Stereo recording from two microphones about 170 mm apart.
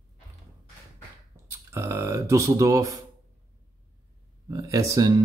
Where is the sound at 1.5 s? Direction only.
15° right (ahead or behind).